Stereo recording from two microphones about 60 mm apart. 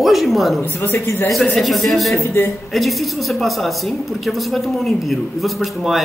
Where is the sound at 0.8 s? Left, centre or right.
Left.